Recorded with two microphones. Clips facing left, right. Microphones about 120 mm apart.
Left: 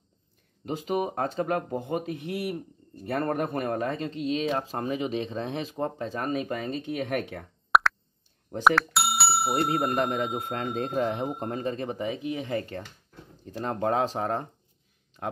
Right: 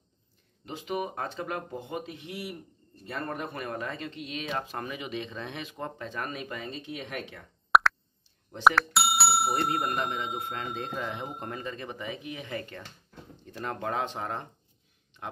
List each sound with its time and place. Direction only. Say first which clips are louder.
0.7 s speech: left 5 dB; 40° left (ahead or behind)
7.7 s plop: even; centre (ahead or behind)
8.6 s bicycle bell: even; centre (ahead or behind)
9.9 s speech: left 5 dB; 50° left (ahead or behind)